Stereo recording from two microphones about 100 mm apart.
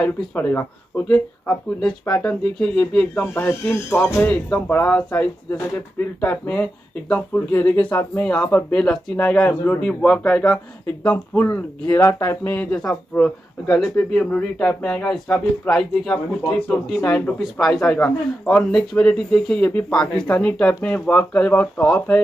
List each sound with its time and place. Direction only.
0.0 s speech: 15° left (ahead or behind)
11.1 s speech: 20° left (ahead or behind)
12.7 s speech: 10° left (ahead or behind)